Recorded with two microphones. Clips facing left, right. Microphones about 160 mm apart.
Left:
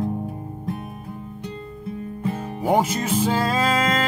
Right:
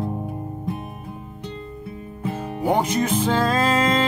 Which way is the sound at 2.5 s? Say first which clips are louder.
Even; 5° left (ahead or behind).